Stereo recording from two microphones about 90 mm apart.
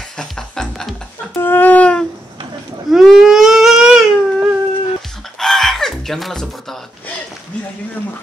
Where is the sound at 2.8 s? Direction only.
5° right (ahead or behind).